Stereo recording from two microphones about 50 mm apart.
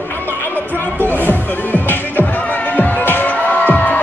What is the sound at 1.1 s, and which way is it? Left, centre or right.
Music, left.